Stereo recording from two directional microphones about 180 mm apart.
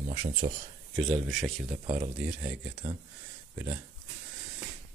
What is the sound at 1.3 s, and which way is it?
Speech, centre (ahead or behind).